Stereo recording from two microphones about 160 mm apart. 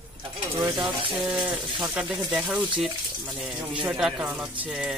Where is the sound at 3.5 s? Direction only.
30° right (ahead or behind).